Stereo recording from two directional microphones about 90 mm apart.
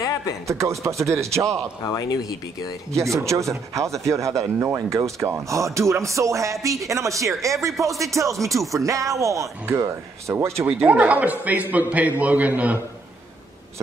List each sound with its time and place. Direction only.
0.0 s a sound: 35° left (ahead or behind)
0.5 s speech: 35° right (ahead or behind)
1.9 s speech: 45° left (ahead or behind)
3.0 s speech: 35° right (ahead or behind)
10.7 s a man's voice: 15° right (ahead or behind)